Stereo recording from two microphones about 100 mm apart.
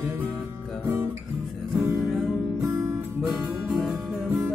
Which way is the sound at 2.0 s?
5° right (ahead or behind).